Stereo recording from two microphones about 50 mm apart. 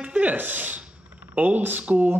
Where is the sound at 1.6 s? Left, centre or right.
Right.